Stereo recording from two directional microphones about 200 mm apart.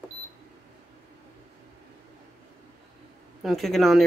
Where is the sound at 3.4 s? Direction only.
Centre (ahead or behind).